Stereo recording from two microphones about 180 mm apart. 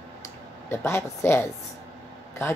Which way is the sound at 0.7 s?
15° left (ahead or behind).